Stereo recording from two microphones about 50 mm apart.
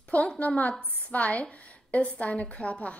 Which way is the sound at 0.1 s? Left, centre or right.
Left.